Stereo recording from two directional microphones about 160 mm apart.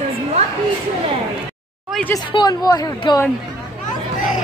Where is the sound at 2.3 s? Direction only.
25° left (ahead or behind).